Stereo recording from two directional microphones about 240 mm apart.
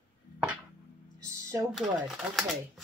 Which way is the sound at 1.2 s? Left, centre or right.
Centre.